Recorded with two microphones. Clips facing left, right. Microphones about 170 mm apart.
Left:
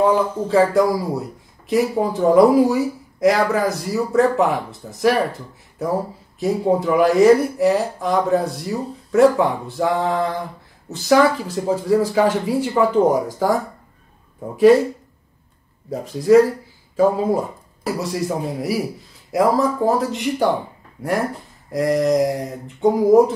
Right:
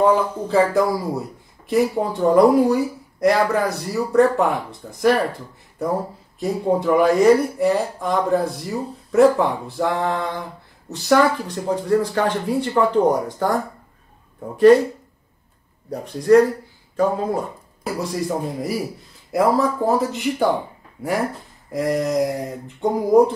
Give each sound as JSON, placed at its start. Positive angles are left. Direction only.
{"t": 0.0, "sound": "speech", "side_deg": 0}
{"t": 6.4, "sound": "speech", "side_deg": 0}
{"t": 15.9, "sound": "speech", "side_deg": 5}
{"t": 21.6, "sound": "speech", "side_deg": 0}